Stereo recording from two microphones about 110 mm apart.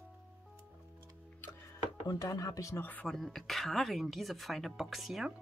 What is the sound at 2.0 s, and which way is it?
Speech, 35° left (ahead or behind).